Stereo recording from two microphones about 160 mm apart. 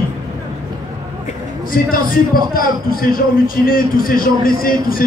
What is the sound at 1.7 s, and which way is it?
A man's voice, 65° left (ahead or behind).